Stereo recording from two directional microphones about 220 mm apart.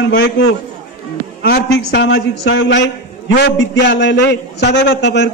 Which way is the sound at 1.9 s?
55° left (ahead or behind).